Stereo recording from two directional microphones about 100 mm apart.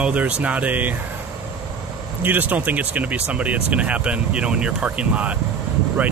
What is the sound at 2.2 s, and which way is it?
Speech, 15° right (ahead or behind).